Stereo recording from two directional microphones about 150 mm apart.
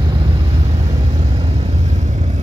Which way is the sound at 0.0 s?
35° right (ahead or behind).